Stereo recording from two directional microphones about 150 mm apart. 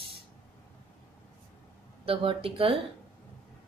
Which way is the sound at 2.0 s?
40° right (ahead or behind).